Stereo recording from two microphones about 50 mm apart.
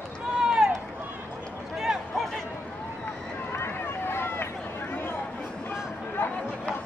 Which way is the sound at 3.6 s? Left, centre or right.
Left.